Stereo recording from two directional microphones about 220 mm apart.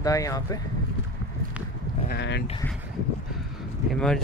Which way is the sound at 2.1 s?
50° left (ahead or behind).